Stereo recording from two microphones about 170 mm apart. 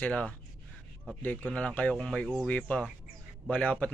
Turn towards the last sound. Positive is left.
turn(degrees=5)  # may be behind; listen again after turning